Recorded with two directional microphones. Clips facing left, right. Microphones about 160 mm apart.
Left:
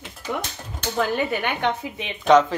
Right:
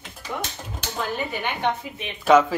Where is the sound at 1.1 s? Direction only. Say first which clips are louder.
Left 4 dB; 70° left (ahead or behind).